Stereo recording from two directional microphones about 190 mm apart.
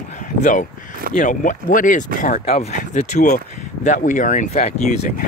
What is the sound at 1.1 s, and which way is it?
Speech, 40° left (ahead or behind).